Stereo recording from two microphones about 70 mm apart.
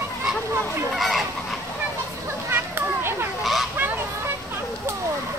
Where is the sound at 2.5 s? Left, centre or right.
Right.